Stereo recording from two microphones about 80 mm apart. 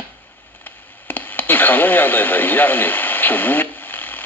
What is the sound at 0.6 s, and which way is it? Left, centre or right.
Radio, left.